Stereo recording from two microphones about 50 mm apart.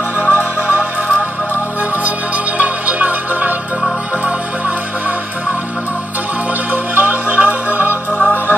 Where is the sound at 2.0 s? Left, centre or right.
Right.